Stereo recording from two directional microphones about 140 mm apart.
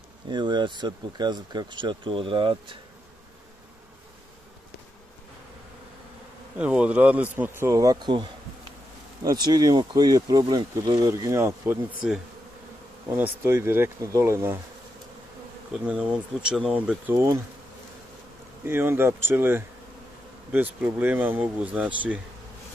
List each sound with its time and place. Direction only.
0.3 s speech: 30° right (ahead or behind)
6.6 s speech: 10° right (ahead or behind)
12.0 s bee: 5° right (ahead or behind)
13.1 s speech: 15° right (ahead or behind)
15.7 s speech: 10° right (ahead or behind)
17.1 s speech: 20° right (ahead or behind)
18.7 s speech: 15° right (ahead or behind)